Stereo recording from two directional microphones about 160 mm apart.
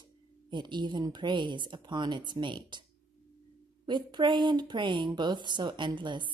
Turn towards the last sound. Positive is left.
turn(degrees=-30)  # may be behind; listen again after turning